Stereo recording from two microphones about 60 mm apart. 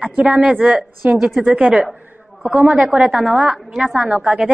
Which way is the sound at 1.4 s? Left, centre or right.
Centre.